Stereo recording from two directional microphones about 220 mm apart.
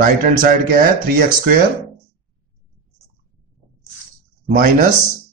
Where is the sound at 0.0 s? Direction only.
35° right (ahead or behind).